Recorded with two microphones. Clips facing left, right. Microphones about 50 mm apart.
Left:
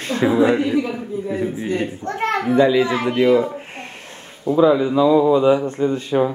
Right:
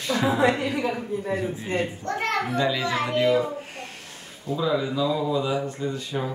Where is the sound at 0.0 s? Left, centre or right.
Left.